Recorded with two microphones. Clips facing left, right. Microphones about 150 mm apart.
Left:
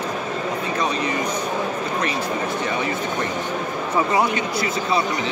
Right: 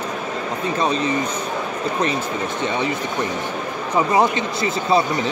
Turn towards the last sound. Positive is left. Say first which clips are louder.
# right 3 dB
turn(degrees=-25)  # may be behind; listen again after turning